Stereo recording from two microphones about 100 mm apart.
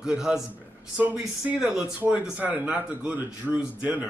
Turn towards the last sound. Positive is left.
turn(degrees=-10)  # may be behind; listen again after turning